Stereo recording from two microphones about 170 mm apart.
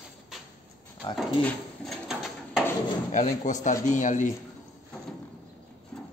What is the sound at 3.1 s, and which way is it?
Speech, 45° left (ahead or behind).